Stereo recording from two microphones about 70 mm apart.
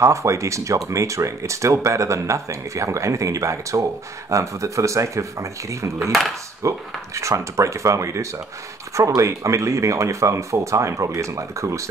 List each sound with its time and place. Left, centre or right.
0.0 s speech: right